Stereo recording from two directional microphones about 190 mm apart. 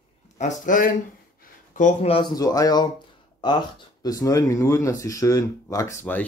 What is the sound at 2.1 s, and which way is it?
Speech, 20° left (ahead or behind).